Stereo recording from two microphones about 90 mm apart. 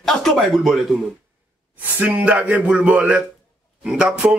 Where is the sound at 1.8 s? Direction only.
20° right (ahead or behind).